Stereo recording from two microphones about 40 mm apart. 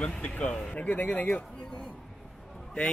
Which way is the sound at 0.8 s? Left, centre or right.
Left.